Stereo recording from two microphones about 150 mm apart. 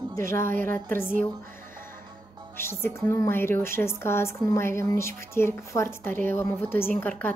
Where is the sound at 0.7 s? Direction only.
15° left (ahead or behind).